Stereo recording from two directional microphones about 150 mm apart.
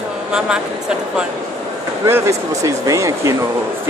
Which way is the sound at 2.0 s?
15° right (ahead or behind).